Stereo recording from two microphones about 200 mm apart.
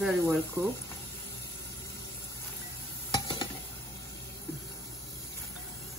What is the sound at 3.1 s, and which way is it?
Stir, 20° left (ahead or behind).